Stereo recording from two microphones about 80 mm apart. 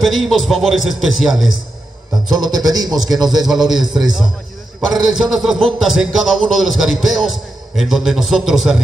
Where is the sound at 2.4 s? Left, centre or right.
Right.